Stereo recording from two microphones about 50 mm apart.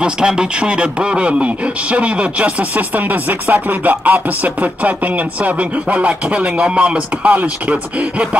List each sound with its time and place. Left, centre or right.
0.0 s a man's voice: centre
3.1 s chopping: right